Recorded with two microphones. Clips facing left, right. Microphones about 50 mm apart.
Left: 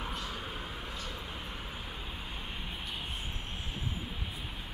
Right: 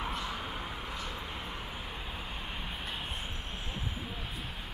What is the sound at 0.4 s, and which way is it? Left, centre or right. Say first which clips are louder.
Vehicle: right 2 dB; centre.